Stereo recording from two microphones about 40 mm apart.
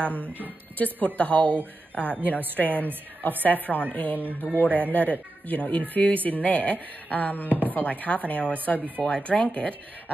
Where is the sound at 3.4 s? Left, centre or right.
Left.